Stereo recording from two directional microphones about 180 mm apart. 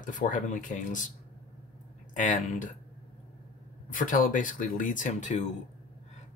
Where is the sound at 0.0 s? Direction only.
45° left (ahead or behind).